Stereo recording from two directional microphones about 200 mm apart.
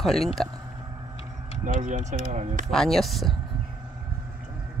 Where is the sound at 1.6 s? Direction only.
40° right (ahead or behind).